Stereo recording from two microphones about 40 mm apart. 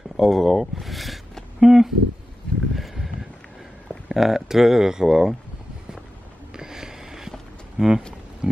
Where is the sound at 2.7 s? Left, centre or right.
Centre.